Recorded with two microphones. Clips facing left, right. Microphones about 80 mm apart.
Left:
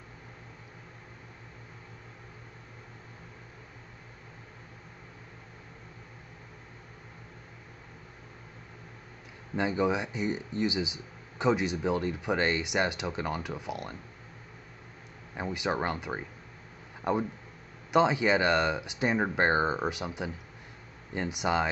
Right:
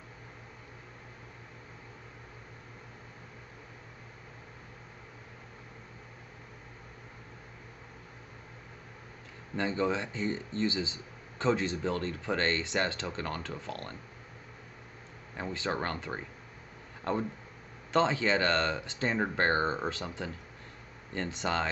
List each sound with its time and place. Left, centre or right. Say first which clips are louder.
9.6 s speech: left 2 dB; centre
15.3 s speech: left 3 dB; centre